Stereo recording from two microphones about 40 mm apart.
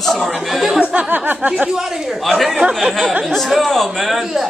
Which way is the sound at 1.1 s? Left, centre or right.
Right.